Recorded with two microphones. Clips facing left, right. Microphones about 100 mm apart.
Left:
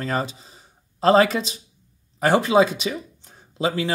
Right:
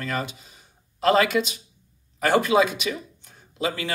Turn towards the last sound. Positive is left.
turn(degrees=30)  # may be behind; listen again after turning